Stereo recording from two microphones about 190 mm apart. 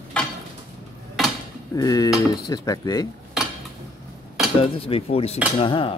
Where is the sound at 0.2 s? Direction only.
5° left (ahead or behind).